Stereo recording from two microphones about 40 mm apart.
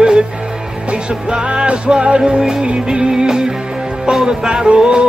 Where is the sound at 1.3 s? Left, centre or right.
Right.